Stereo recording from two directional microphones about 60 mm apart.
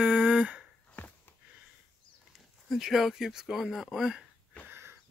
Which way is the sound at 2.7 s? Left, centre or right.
Centre.